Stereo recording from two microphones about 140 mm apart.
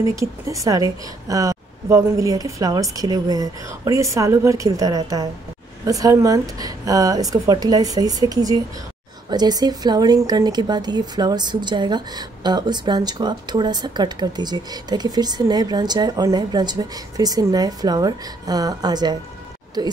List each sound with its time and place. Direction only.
0.0 s a woman's voice: 20° right (ahead or behind)